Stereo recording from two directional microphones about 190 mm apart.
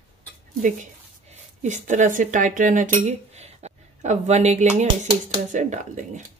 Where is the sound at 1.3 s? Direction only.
40° right (ahead or behind).